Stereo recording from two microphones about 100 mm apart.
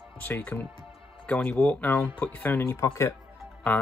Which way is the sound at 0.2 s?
15° left (ahead or behind).